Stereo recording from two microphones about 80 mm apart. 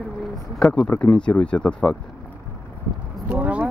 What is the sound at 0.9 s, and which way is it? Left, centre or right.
Speech, left.